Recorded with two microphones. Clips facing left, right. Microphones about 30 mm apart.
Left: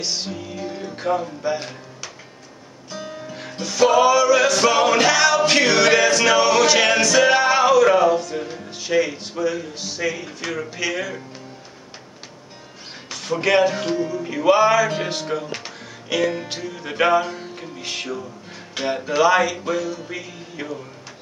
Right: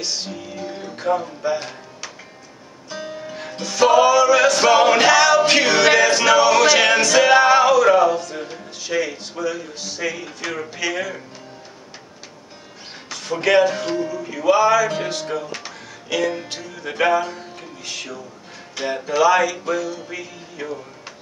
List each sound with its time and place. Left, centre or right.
0.0 s music: centre
6.2 s singing: centre
6.6 s male singing: centre
8.5 s speech: centre
13.4 s speech: centre
13.8 s music: centre
17.7 s music: left; by 20.2 s centre
20.6 s music: centre